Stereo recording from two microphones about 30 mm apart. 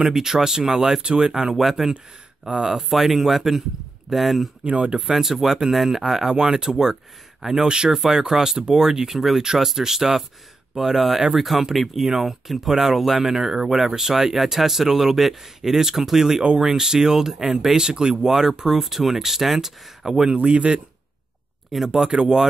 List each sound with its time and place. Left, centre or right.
0.1 s speech: centre
1.0 s speech: right
1.3 s speech: centre
4.6 s speech: right
4.9 s speech: centre
6.3 s speech: right
7.6 s speech: right
9.1 s speech: centre
9.4 s speech: right
18.7 s speech: centre
20.2 s speech: right
21.8 s speech: centre
22.1 s speech: right